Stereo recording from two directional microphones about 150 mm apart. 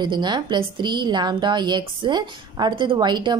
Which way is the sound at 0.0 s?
30° right (ahead or behind).